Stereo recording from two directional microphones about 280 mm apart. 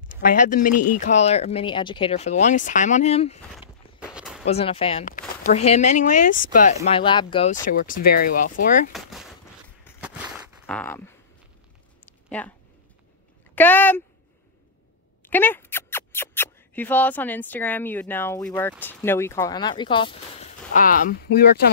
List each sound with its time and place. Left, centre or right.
0.2 s speech: left
3.6 s walk: centre
4.5 s speech: left
8.9 s a sound: centre
12.3 s speech: centre
13.6 s speech: centre
15.2 s speech: centre; by 21.6 s left